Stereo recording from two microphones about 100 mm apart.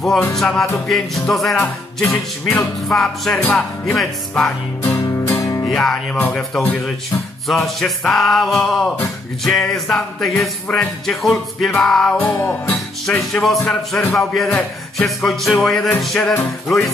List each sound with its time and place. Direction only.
0.3 s music: 5° left (ahead or behind)
4.8 s music: 20° left (ahead or behind)
5.4 s music: 35° left (ahead or behind)
5.7 s music: 5° left (ahead or behind)
7.4 s music: centre (ahead or behind)
16.3 s music: 25° left (ahead or behind)